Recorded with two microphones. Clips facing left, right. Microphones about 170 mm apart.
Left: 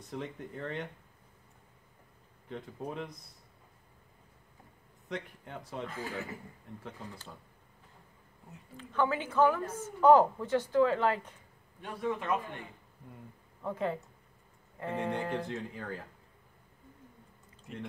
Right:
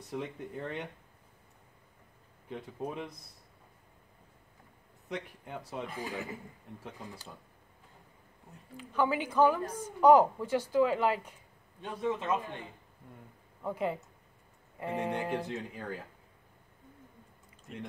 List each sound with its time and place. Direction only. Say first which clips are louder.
0.6 s a woman's voice: even; 10° right (ahead or behind)
2.5 s a woman's voice: right 1 dB; 15° right (ahead or behind)
5.1 s a woman's voice: right 1 dB; 10° right (ahead or behind)
8.7 s a woman's voice: right 1 dB; 10° right (ahead or behind)
13.6 s a woman's voice: even; 10° right (ahead or behind)